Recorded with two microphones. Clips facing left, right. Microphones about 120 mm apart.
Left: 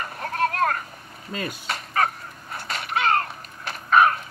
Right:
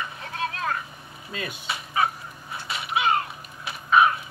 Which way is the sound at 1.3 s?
40° left (ahead or behind).